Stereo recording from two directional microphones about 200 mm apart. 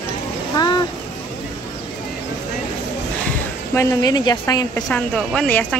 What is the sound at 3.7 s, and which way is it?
A woman's voice, 15° left (ahead or behind).